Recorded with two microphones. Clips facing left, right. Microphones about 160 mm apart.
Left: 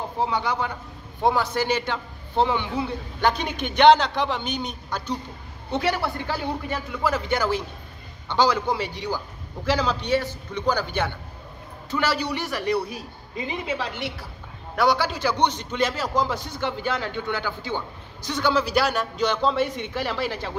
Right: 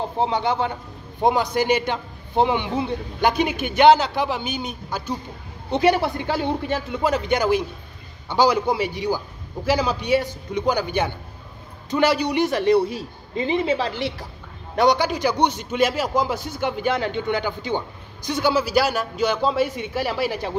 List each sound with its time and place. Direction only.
0.2 s a man's voice: 25° right (ahead or behind); by 5.1 s 5° right (ahead or behind)
5.7 s a man's voice: 15° right (ahead or behind); by 14.1 s 35° right (ahead or behind)
14.8 s a man's voice: 20° right (ahead or behind)